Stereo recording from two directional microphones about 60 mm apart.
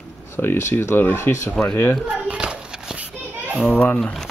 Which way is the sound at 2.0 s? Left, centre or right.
Centre.